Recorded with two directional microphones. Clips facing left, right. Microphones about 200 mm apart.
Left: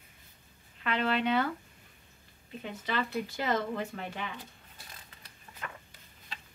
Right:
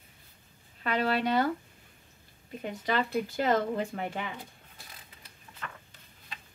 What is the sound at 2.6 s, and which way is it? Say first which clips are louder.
Speech: right 4 dB; 45° right (ahead or behind).